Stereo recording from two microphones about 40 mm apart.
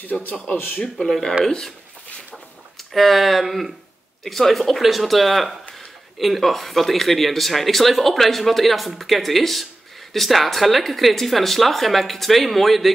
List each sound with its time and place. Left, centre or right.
0.0 s speech: left
0.6 s speech: left
0.9 s speech: centre
2.3 s a sound: centre
4.2 s speech: centre